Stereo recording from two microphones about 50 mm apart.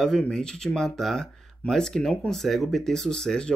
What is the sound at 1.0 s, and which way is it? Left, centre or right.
Speech, centre.